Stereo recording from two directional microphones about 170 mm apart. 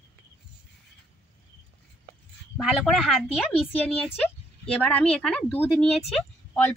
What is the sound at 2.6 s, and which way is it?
A woman's voice, centre (ahead or behind).